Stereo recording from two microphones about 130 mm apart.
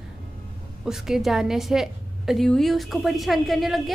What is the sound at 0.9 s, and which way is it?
A woman's voice, 5° right (ahead or behind).